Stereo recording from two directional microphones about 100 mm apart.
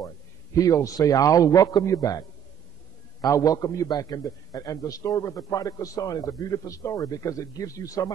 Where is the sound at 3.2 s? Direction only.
35° left (ahead or behind).